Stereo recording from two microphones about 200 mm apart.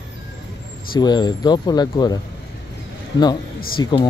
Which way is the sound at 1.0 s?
20° left (ahead or behind).